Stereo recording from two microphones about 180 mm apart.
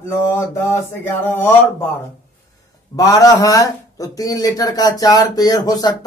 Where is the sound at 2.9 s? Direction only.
20° left (ahead or behind).